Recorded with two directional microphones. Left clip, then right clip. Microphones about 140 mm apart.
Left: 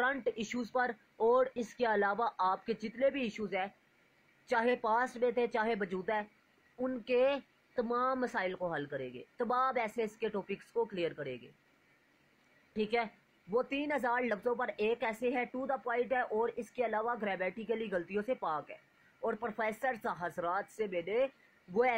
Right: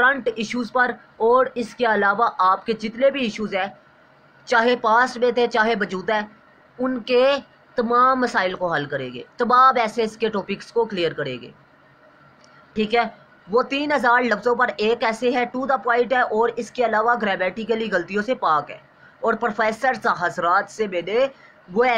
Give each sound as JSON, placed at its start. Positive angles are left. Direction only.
{"t": 0.0, "sound": "speech", "side_deg": 55}
{"t": 12.7, "sound": "speech", "side_deg": 50}